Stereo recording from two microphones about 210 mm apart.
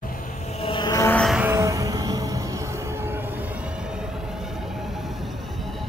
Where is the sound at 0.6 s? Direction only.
25° left (ahead or behind).